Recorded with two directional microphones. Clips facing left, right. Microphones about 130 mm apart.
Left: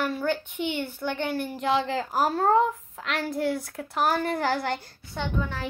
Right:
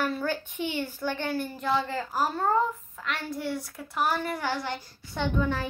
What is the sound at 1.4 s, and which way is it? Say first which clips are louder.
Speech: left 4 dB; 20° left (ahead or behind).